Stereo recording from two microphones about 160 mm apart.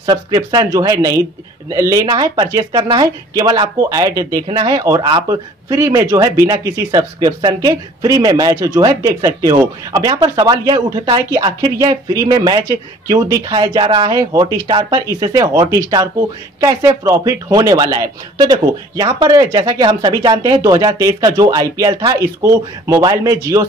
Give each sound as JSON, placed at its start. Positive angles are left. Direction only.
{"t": 0.0, "sound": "speech", "side_deg": -25}